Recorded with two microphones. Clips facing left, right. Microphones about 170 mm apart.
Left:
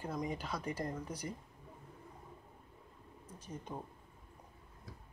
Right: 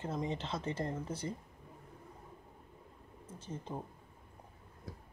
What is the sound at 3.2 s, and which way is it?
Speech, 30° right (ahead or behind).